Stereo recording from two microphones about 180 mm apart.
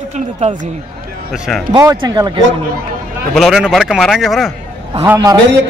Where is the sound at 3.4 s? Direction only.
Centre (ahead or behind).